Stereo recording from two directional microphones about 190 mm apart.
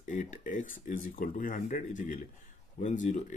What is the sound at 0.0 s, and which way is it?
Speech, 40° left (ahead or behind).